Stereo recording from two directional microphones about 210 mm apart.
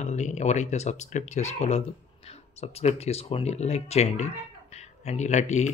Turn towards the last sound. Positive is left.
turn(degrees=35)  # may be behind; listen again after turning